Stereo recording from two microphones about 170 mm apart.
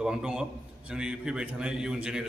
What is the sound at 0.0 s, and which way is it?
A man's voice, 5° right (ahead or behind).